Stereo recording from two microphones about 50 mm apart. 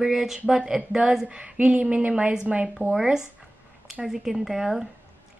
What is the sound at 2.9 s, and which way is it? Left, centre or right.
A woman's voice, centre.